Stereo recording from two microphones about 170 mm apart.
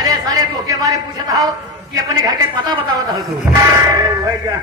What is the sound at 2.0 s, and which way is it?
A man's voice, 20° right (ahead or behind).